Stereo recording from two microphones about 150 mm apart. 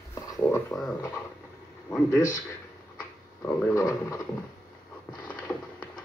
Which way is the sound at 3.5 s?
20° left (ahead or behind).